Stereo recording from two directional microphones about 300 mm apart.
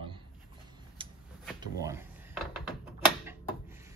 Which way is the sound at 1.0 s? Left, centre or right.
Centre.